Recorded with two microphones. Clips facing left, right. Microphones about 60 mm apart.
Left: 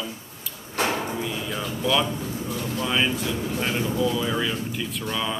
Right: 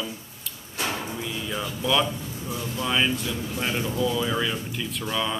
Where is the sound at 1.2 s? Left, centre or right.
Centre.